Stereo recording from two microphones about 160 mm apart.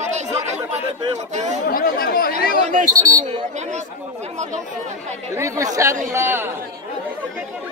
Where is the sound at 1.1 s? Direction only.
45° right (ahead or behind).